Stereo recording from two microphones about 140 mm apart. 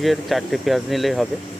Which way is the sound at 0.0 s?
Centre (ahead or behind).